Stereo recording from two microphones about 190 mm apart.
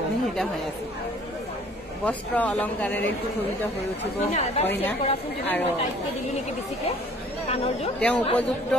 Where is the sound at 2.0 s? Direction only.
10° left (ahead or behind).